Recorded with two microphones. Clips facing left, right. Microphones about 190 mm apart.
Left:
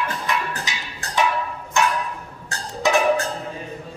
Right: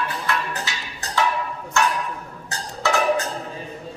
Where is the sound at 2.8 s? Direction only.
15° left (ahead or behind).